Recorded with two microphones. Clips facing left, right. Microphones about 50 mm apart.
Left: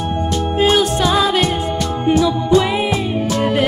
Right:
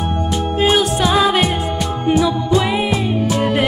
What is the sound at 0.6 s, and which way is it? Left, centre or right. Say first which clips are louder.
Music: left 1 dB; centre.